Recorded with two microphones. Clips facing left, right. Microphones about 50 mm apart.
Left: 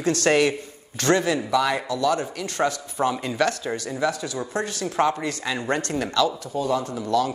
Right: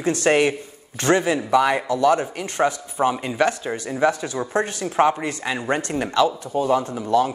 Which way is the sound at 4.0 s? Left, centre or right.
Right.